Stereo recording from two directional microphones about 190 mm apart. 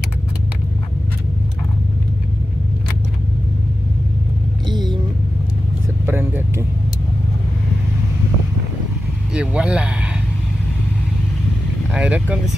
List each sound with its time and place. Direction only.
4.6 s vehicle: 20° right (ahead or behind)
6.0 s vehicle: 10° right (ahead or behind)
9.3 s speech: 5° right (ahead or behind)
11.9 s speech: 5° right (ahead or behind)